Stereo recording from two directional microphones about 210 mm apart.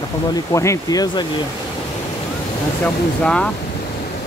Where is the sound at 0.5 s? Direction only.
15° left (ahead or behind).